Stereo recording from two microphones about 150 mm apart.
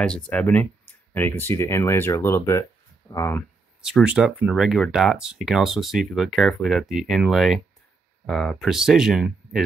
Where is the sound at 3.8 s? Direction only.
5° right (ahead or behind).